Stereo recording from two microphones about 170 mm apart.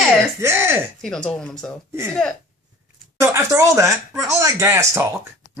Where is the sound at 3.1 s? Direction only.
15° right (ahead or behind).